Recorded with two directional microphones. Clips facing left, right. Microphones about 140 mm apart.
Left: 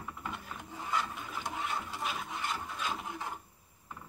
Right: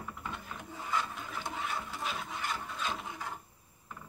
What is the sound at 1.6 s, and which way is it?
Wood, centre (ahead or behind).